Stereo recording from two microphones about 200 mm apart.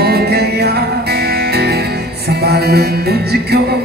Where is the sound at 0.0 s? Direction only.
50° right (ahead or behind).